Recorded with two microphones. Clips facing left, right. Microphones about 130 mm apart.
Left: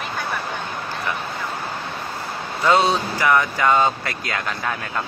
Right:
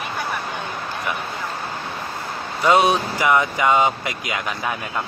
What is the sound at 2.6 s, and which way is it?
Speech, 20° right (ahead or behind).